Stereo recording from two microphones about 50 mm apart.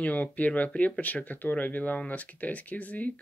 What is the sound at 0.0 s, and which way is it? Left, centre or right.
Speech, left.